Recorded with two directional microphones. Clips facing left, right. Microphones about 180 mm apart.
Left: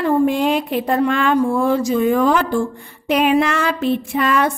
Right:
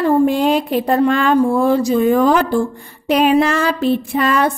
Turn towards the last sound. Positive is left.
turn(degrees=-35)  # may be behind; listen again after turning